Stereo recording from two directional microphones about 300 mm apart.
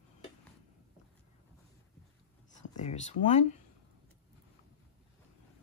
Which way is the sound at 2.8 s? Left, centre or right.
Left.